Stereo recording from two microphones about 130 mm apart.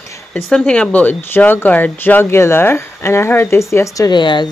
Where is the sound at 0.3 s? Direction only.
5° left (ahead or behind).